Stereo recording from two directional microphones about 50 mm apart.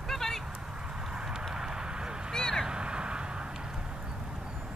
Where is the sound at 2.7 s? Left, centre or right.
Centre.